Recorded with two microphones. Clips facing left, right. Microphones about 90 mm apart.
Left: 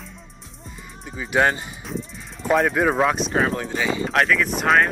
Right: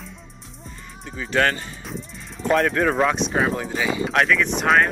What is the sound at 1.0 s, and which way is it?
Speech, 10° left (ahead or behind).